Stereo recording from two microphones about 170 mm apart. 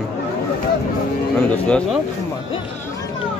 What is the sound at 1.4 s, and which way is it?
Speech, 5° left (ahead or behind).